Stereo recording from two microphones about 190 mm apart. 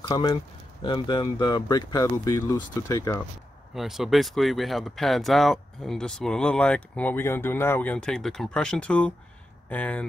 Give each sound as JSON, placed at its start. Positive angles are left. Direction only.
{"t": 0.1, "sound": "speech", "side_deg": 20}
{"t": 3.7, "sound": "speech", "side_deg": 0}